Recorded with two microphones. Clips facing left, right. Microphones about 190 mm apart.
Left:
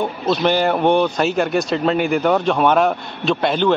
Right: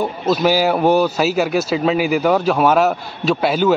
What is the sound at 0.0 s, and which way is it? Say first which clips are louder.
A man's voice: right 1 dB; 5° right (ahead or behind).